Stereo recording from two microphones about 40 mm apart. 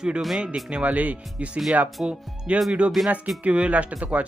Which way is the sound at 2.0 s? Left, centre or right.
Right.